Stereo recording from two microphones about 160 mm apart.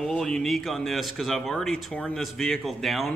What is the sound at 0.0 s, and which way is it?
A man's voice, 5° left (ahead or behind).